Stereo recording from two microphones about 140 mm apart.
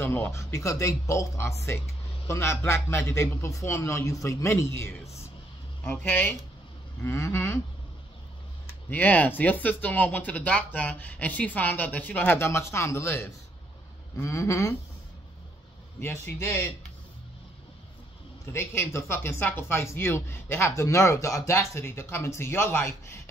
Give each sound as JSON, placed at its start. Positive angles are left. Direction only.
{"t": 0.0, "sound": "a man's voice", "side_deg": 15}
{"t": 5.9, "sound": "speech", "side_deg": 15}
{"t": 8.9, "sound": "a man's voice", "side_deg": 10}
{"t": 16.0, "sound": "speech", "side_deg": 20}
{"t": 18.5, "sound": "speech", "side_deg": 20}